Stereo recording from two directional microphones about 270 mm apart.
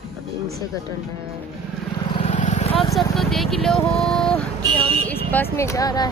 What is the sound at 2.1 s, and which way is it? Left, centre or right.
Vehicle, left.